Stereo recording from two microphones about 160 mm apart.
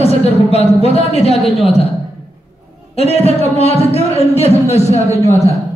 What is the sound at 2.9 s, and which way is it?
A man's voice, 40° left (ahead or behind).